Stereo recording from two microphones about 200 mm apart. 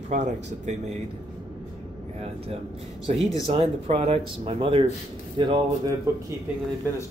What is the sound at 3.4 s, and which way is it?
Speech, 30° right (ahead or behind).